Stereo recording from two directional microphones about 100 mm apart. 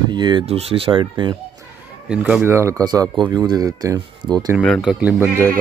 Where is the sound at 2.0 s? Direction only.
10° right (ahead or behind).